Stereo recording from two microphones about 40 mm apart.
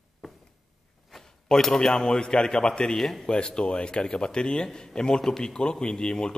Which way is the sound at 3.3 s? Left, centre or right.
Left.